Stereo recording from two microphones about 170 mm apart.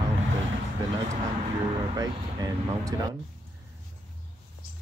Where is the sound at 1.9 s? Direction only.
20° right (ahead or behind).